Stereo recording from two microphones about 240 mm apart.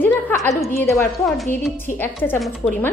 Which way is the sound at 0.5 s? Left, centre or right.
Centre.